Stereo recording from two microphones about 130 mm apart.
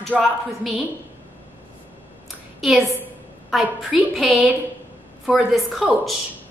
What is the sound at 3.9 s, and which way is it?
Speech, centre (ahead or behind).